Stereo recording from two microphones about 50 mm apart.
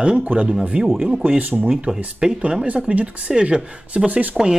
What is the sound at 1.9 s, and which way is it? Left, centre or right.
Speech, right.